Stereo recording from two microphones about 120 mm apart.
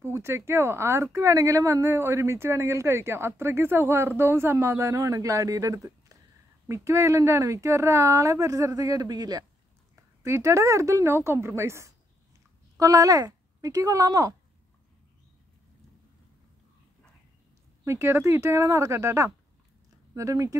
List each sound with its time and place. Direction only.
0.0 s speech: 20° right (ahead or behind)
17.8 s speech: 20° right (ahead or behind)